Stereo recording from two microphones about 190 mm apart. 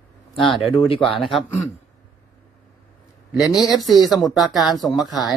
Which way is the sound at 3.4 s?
20° left (ahead or behind).